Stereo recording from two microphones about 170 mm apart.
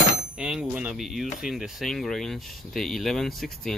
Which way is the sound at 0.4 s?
5° right (ahead or behind).